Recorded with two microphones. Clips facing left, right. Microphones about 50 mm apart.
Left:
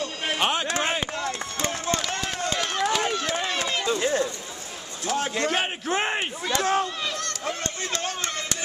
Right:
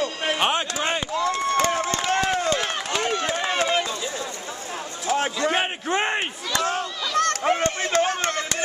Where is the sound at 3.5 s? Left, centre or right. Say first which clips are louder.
Right 5 dB; right.